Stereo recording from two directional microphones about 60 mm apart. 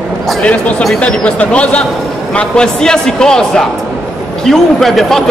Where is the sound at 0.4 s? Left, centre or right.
Left.